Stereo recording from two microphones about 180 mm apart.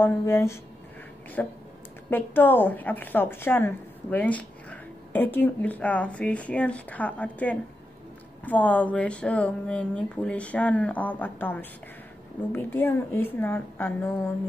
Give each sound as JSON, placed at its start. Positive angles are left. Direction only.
{"t": 0.0, "sound": "a woman's voice", "side_deg": 15}